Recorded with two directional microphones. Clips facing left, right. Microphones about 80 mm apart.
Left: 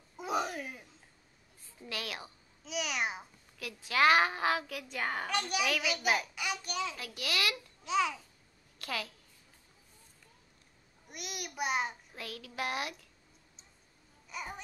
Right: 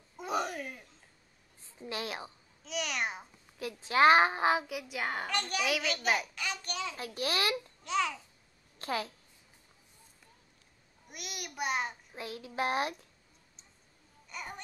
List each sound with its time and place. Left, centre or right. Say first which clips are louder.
0.2 s a sound: even; centre
1.8 s a woman's voice: right 3 dB; right
2.6 s a child's voice: even; centre
3.5 s a child's voice: right 3 dB; right; by 5.3 s centre
5.3 s a child's voice: even; centre
6.3 s a sound: left 1 dB; centre
7.2 s a child's voice: right 3 dB; right
7.8 s a child's voice: left 2 dB; centre
8.7 s a woman's voice: right 4 dB; right
11.1 s a child's voice: left 1 dB; centre
12.2 s a child's voice: right 4 dB; right
14.3 s babbling: left 1 dB; centre